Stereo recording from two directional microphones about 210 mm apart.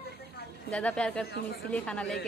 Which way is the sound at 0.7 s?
5° left (ahead or behind).